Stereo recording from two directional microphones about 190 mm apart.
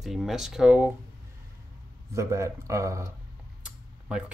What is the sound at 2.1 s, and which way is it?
Speech, 15° right (ahead or behind).